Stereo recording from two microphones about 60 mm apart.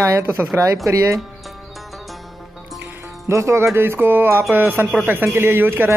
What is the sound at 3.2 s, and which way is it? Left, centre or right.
Speech, right.